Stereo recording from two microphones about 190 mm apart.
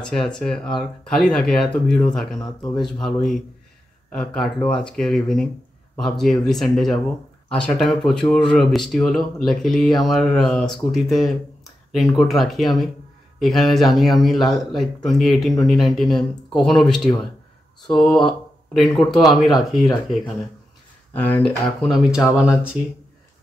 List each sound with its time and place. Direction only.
0.0 s speech: centre (ahead or behind)
17.8 s speech: 5° left (ahead or behind)
21.9 s speech: centre (ahead or behind)